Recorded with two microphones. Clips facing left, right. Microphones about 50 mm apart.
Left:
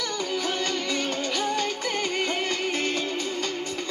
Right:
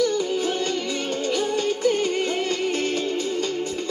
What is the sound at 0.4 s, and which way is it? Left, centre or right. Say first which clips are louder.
Music: right 3 dB; left.